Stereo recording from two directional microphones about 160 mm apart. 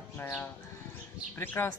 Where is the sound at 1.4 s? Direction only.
15° left (ahead or behind).